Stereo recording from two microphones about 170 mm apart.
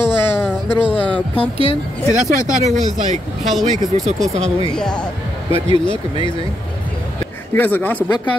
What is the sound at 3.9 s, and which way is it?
Speech, 45° right (ahead or behind).